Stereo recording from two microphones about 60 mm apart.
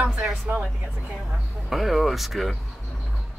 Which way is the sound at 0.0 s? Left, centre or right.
Centre.